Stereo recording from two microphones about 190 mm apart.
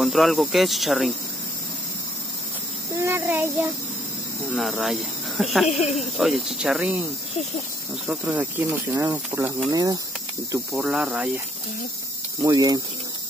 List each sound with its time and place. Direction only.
0.0 s speech: centre (ahead or behind)
2.9 s a child's voice: 15° right (ahead or behind)
4.6 s speech: centre (ahead or behind)
8.1 s speech: 10° right (ahead or behind)
10.8 s speech: 5° right (ahead or behind)
12.4 s speech: 20° right (ahead or behind)